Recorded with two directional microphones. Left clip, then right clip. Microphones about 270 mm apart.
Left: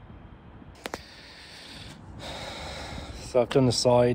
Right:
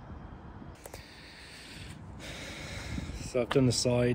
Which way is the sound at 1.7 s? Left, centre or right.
Centre.